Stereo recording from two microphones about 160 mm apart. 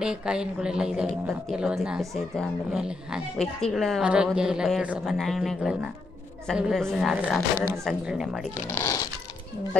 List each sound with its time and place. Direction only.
0.0 s a woman's voice: 5° right (ahead or behind)
8.5 s speech: 15° left (ahead or behind)